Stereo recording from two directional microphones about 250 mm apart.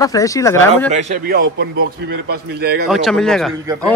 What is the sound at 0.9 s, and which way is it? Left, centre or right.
Speech, right.